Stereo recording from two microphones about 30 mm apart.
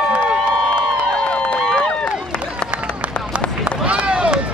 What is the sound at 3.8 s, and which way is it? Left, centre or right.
Run, right.